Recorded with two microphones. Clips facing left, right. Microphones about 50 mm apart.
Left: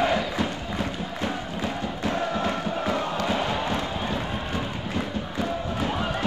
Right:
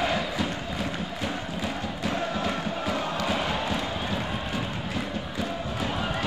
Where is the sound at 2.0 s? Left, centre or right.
Centre.